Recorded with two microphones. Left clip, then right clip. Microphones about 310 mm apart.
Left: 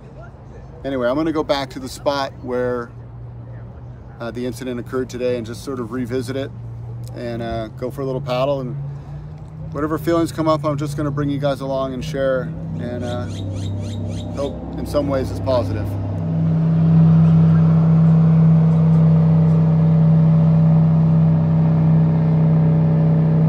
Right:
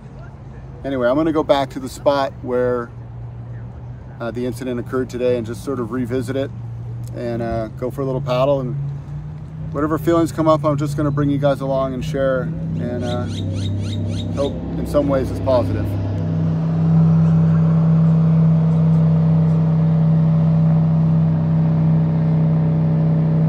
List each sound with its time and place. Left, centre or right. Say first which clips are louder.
0.8 s speech: right 2 dB; centre
4.2 s speech: right 2 dB; centre
9.8 s speech: right 2 dB; centre
13.3 s rodents: right 3 dB; right
14.3 s speech: right 3 dB; centre
16.7 s vehicle: left 1 dB; centre